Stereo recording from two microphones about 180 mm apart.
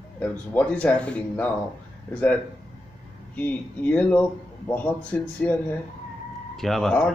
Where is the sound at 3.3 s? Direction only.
10° left (ahead or behind).